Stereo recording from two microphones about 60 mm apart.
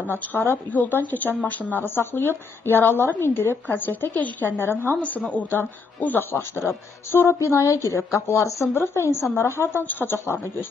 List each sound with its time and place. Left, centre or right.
0.0 s speech: left
5.9 s speech: left
7.1 s speech: left
10.1 s speech: left